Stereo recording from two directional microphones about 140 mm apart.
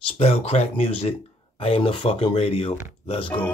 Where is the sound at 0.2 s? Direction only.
50° left (ahead or behind).